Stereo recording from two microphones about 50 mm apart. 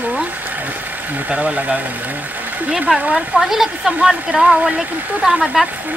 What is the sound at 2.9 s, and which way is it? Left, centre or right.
Speech, centre.